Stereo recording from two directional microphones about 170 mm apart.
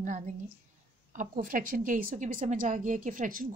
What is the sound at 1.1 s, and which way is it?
A woman's voice, 50° right (ahead or behind).